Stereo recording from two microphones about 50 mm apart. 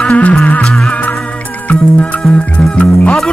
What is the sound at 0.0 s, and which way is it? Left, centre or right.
Music, left.